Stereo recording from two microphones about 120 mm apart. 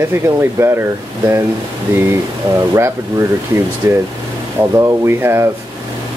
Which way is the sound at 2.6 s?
25° right (ahead or behind).